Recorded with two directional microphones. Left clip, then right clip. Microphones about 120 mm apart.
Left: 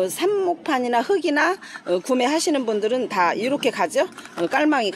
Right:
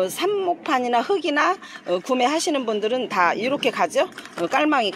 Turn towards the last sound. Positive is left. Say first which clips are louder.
# even
turn(degrees=20)  # may be behind; listen again after turning